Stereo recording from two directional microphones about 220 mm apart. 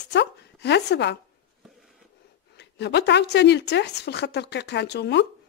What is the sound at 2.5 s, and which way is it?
Speech, 50° left (ahead or behind).